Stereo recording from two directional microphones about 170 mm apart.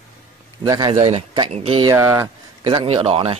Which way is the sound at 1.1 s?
35° right (ahead or behind).